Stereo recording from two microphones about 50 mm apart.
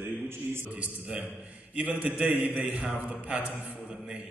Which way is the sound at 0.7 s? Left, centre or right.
Right.